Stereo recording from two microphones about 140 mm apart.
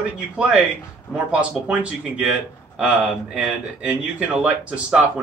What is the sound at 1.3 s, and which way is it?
Speech, 10° right (ahead or behind).